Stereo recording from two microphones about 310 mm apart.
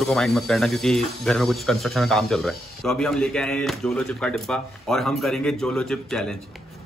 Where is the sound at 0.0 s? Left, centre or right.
Centre.